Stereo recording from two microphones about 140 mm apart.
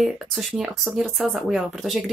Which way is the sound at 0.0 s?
Centre (ahead or behind).